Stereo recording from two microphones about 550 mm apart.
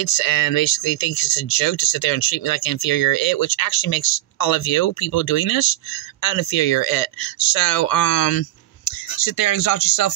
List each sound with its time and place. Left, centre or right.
0.0 s speech: left